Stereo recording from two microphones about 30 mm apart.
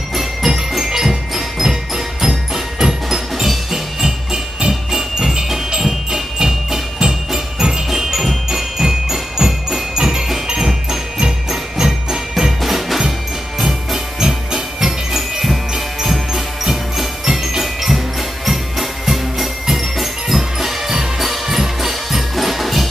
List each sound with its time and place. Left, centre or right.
0.1 s music: centre
5.8 s music: centre
12.6 s percussion: centre
13.7 s music: centre